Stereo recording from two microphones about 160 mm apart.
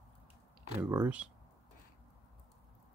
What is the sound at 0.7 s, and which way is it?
Speech, 15° right (ahead or behind).